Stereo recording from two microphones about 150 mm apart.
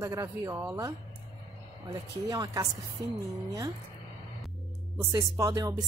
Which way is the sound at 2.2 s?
25° right (ahead or behind).